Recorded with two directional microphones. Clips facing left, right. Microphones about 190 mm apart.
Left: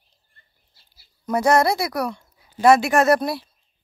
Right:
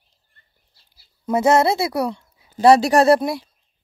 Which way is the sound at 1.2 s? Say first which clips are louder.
Right 2 dB; 25° right (ahead or behind).